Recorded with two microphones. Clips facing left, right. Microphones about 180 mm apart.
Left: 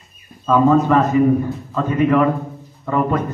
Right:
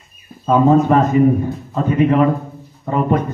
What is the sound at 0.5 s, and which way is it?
A man's voice, 25° right (ahead or behind).